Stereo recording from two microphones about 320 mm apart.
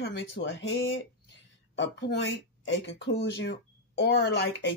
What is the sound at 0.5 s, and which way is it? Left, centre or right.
Speech, left.